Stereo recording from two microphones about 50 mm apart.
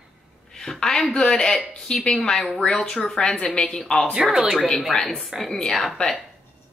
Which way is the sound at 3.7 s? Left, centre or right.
Centre.